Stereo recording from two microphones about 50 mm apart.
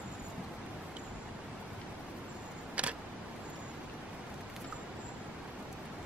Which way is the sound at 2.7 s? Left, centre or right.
Right.